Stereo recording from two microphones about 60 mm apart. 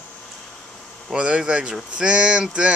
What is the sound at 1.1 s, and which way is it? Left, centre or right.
Speech, centre.